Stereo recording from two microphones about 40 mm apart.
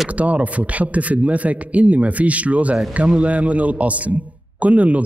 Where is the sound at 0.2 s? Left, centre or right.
Right.